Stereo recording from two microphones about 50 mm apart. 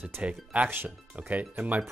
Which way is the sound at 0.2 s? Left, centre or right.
Right.